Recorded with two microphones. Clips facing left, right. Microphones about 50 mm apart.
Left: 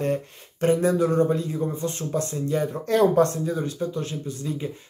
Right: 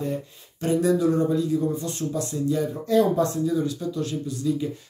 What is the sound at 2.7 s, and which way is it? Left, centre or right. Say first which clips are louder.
Speech: left 2 dB; left.